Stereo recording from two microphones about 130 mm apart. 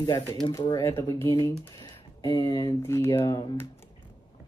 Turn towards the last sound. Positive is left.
turn(degrees=30)  # may be behind; listen again after turning